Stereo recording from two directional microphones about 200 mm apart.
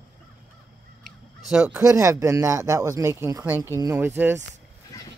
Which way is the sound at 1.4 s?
5° right (ahead or behind).